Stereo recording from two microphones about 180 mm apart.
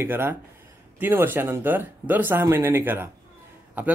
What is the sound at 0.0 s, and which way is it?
Speech, 10° right (ahead or behind).